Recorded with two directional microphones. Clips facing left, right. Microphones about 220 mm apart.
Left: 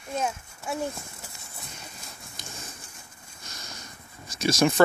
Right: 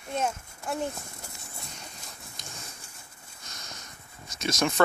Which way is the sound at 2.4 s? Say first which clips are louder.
Left 3 dB; 5° left (ahead or behind).